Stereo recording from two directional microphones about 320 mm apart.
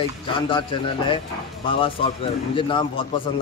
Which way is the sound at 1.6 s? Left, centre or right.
Centre.